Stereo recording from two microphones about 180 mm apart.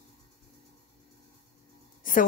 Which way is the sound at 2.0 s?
50° left (ahead or behind).